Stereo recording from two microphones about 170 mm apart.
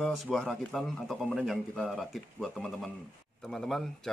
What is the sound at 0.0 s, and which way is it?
Speech, centre (ahead or behind).